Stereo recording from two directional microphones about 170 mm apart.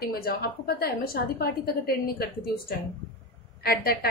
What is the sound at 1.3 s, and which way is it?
Speech, 65° left (ahead or behind).